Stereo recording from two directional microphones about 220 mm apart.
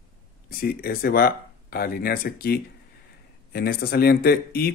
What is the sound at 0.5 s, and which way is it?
Speech, 40° left (ahead or behind).